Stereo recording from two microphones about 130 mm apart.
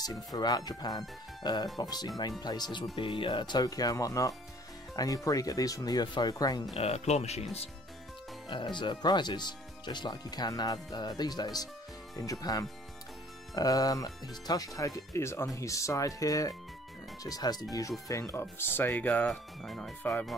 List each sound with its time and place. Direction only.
0.0 s speech: 30° left (ahead or behind)
6.8 s speech: 55° left (ahead or behind)
8.5 s speech: 40° left (ahead or behind); by 20.3 s 5° left (ahead or behind)